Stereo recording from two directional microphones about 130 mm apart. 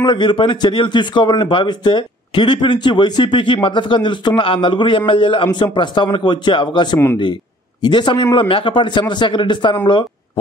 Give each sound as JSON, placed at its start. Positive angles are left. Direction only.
{"t": 0.0, "sound": "a man's voice", "side_deg": 35}